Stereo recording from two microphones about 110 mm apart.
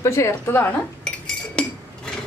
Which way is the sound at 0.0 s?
25° left (ahead or behind).